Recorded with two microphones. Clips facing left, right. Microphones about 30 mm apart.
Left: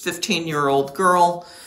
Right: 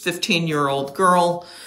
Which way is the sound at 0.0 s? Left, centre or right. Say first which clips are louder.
Right 2 dB; centre.